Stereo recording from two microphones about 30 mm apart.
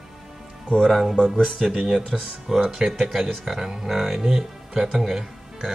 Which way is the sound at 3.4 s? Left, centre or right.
Centre.